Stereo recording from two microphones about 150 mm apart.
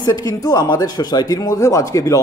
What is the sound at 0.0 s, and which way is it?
Speech, 25° left (ahead or behind).